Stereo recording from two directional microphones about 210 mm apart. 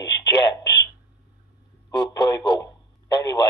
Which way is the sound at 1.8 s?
20° left (ahead or behind).